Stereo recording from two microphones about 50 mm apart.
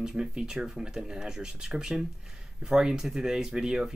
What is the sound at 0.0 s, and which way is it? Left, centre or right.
Speech, centre.